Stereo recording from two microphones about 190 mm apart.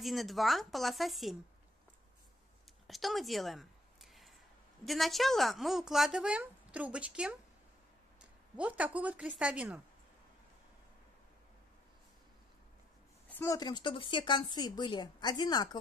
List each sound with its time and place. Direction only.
0.0 s a woman's voice: centre (ahead or behind)
2.9 s a sound: centre (ahead or behind)
4.8 s a woman's voice: centre (ahead or behind)
13.3 s speech: 15° left (ahead or behind)